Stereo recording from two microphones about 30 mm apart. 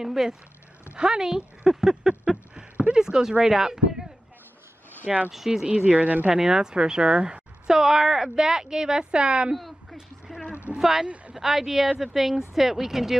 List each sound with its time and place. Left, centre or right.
0.0 s speech: centre
0.9 s speech: right
1.7 s a sound: centre
2.9 s speech: right
5.7 s speech: right
5.9 s speech: right
6.3 s a woman's voice: right
9.6 s a sound: centre
10.8 s speech: centre